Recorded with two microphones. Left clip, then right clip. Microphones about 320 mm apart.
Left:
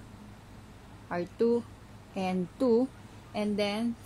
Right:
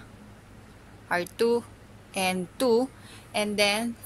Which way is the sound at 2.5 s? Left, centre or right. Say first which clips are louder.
Right 3 dB; right.